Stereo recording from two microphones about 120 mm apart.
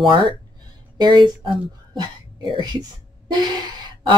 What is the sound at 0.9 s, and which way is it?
Speech, 40° right (ahead or behind).